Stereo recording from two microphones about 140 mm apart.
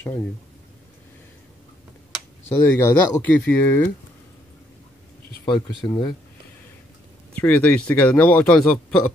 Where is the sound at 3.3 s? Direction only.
10° left (ahead or behind).